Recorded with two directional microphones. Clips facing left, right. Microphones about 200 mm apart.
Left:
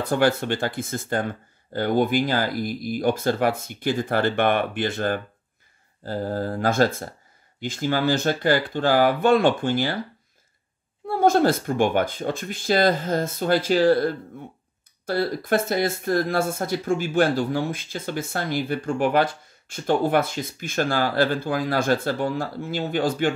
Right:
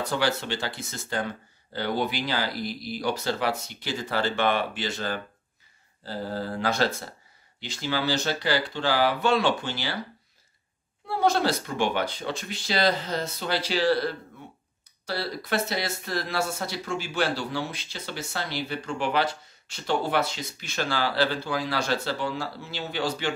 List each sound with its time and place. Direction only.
0.1 s speech: 55° left (ahead or behind)
11.1 s speech: 50° left (ahead or behind)